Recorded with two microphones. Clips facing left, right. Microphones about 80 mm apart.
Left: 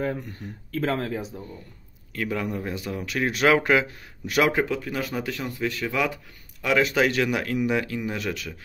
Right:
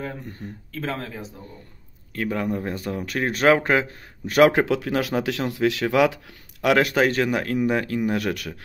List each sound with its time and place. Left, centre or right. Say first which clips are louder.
0.4 s speech: left 3 dB; centre
2.1 s speech: right 3 dB; right
4.5 s speech: right 4 dB; right
7.0 s speech: right 2 dB; right